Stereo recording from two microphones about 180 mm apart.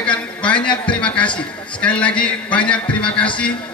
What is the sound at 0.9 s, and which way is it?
A man's voice, 5° left (ahead or behind).